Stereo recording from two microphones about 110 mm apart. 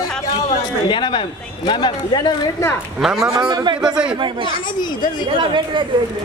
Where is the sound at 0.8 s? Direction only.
45° left (ahead or behind).